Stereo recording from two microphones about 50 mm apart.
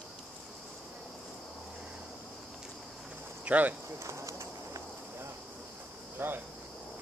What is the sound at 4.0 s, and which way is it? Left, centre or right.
Speech, right.